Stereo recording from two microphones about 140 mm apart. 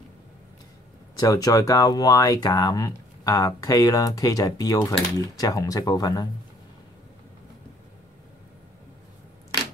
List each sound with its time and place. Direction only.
1.1 s speech: 25° left (ahead or behind)